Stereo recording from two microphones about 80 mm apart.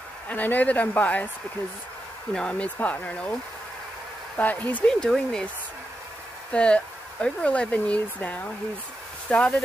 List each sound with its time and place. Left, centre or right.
0.3 s speech: left
2.3 s speech: centre
4.4 s speech: left
4.8 s speech: centre
6.5 s speech: centre